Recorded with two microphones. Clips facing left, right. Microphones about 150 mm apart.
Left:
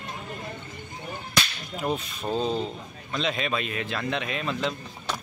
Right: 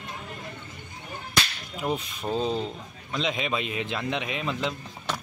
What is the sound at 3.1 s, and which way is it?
Speech, 15° right (ahead or behind).